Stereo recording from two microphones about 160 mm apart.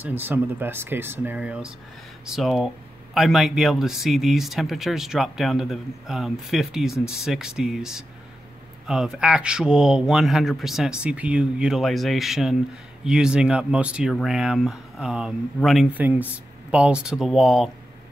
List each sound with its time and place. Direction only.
0.0 s speech: 15° right (ahead or behind)